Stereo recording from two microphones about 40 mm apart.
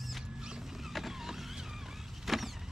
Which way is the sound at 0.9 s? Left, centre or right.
Centre.